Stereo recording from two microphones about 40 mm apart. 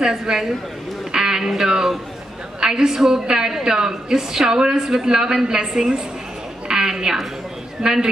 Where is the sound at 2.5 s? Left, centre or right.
Centre.